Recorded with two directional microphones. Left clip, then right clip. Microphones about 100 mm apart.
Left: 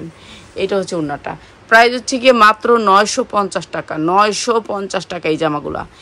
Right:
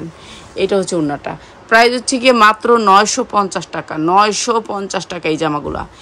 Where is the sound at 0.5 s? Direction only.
35° right (ahead or behind).